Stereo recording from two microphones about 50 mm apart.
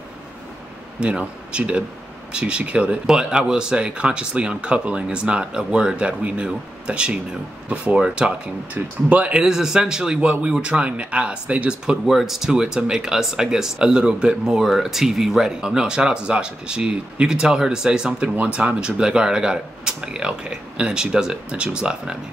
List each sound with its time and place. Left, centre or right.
0.9 s speech: centre
3.1 s speech: centre
9.4 s speech: centre
12.1 s speech: centre
18.3 s speech: right